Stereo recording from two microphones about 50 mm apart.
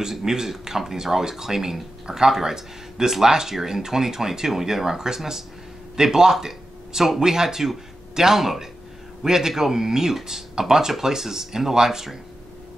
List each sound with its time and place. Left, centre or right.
0.0 s speech: centre